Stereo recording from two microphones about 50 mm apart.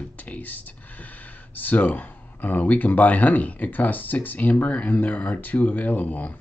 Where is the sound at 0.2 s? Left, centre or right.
Left.